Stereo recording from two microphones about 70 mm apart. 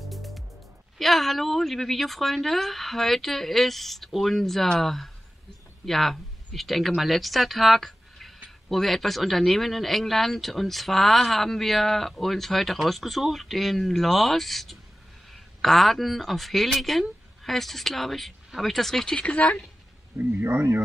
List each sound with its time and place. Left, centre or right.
0.0 s music: centre
0.9 s speech: centre
20.2 s speech: right